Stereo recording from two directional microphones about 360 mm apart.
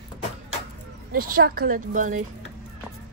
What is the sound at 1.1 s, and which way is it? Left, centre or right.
A woman's voice, right.